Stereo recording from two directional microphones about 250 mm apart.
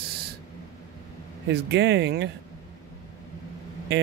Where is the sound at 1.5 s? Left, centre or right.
Right.